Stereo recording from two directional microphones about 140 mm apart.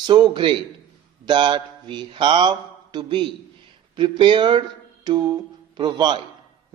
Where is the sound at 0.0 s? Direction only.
35° right (ahead or behind).